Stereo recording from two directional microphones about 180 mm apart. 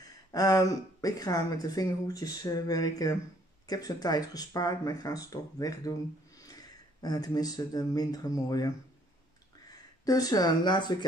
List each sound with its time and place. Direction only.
0.0 s speech: 20° left (ahead or behind)